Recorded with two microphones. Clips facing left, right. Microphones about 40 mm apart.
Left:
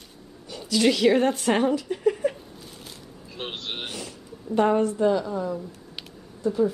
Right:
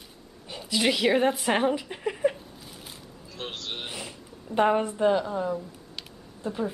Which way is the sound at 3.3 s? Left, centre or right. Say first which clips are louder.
Left 2 dB; left.